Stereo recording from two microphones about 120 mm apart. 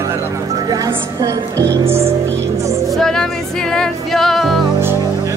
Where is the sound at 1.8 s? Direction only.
55° right (ahead or behind).